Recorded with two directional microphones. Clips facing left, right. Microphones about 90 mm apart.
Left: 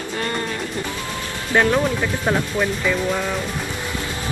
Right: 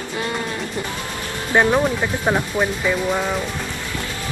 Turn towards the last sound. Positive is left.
turn(degrees=-15)  # may be behind; listen again after turning